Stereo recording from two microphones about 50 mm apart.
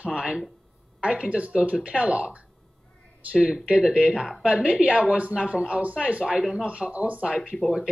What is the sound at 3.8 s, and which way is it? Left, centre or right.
A woman's voice, centre.